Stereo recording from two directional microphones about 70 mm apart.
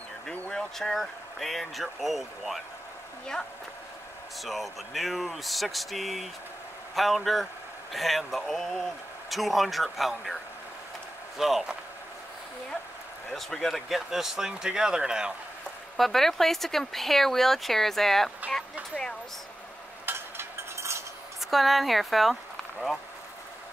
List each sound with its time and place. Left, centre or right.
0.3 s speech: centre
0.6 s speech: centre
4.4 s speech: centre
13.3 s speech: centre
16.0 s speech: centre
20.1 s a sound: right
21.5 s speech: centre